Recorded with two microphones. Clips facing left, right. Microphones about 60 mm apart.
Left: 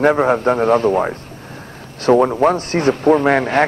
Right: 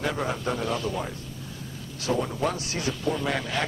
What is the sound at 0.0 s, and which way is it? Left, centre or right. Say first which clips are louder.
A man's voice: left 14 dB; left.